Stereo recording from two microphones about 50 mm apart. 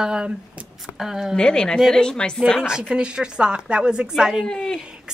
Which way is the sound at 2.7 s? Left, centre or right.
Centre.